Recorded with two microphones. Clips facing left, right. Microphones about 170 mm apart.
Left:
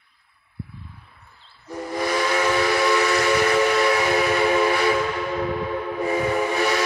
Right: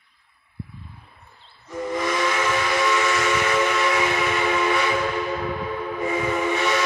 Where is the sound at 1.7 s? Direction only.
35° left (ahead or behind).